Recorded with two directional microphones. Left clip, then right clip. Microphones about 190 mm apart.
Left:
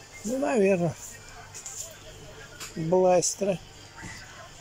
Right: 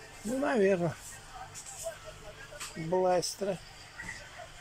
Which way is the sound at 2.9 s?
15° left (ahead or behind).